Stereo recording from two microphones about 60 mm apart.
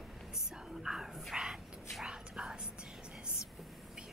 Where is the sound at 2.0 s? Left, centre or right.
Centre.